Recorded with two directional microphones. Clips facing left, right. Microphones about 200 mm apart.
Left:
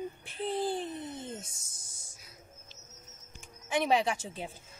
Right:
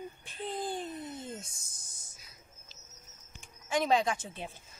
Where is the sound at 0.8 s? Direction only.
25° left (ahead or behind).